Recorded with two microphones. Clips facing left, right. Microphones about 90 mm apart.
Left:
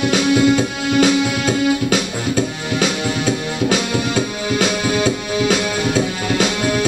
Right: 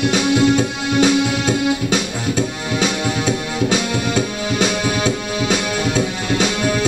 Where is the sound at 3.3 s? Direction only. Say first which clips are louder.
Left 1 dB; 5° left (ahead or behind).